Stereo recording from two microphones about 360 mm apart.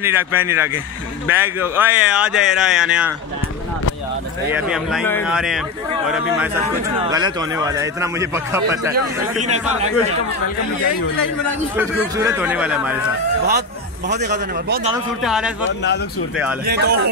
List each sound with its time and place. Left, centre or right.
0.0 s a man's voice: centre
4.5 s speech: centre
6.6 s a man's voice: centre
8.9 s a man's voice: centre
11.7 s speech: centre
13.5 s a man's voice: right
15.2 s speech: centre
16.6 s a man's voice: right